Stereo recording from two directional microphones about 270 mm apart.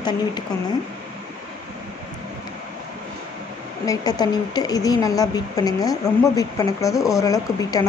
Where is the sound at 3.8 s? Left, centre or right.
Centre.